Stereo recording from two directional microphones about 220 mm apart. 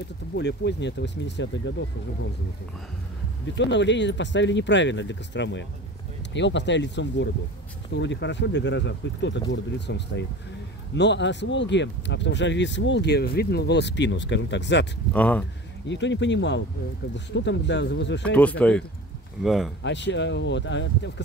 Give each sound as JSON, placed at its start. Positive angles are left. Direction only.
{"t": 0.4, "sound": "speech", "side_deg": 50}
{"t": 3.5, "sound": "speech", "side_deg": 55}
{"t": 15.1, "sound": "speech", "side_deg": 5}
{"t": 15.9, "sound": "speech", "side_deg": 55}
{"t": 18.3, "sound": "speech", "side_deg": 5}
{"t": 19.8, "sound": "speech", "side_deg": 55}